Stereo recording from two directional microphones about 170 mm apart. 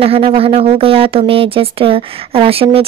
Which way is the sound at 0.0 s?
35° right (ahead or behind).